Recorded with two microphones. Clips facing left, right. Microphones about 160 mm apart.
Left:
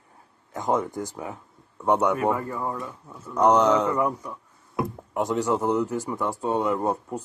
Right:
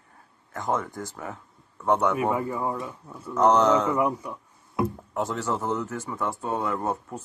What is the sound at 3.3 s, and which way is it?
Speech, 10° left (ahead or behind).